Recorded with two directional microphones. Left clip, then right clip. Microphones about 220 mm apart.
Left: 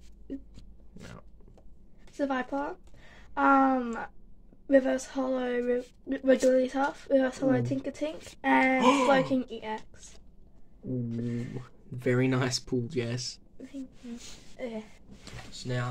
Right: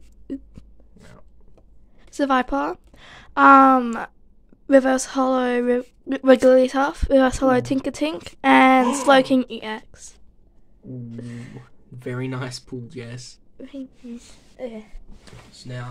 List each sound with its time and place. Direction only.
2.1 s a woman's voice: 35° right (ahead or behind)
11.9 s speech: 25° left (ahead or behind)
14.6 s a sound: 25° right (ahead or behind)
15.5 s speech: 35° left (ahead or behind)